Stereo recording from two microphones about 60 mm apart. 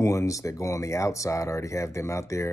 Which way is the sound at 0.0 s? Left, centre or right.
Left.